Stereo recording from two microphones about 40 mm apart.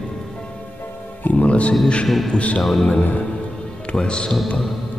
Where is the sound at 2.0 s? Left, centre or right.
Centre.